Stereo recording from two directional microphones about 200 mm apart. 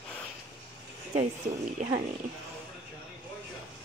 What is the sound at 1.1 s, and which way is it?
Speech, 35° right (ahead or behind).